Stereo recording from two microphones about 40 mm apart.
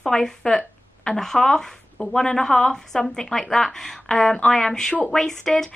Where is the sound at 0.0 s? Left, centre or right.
Centre.